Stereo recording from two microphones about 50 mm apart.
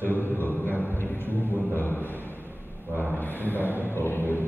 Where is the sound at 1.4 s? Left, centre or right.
Right.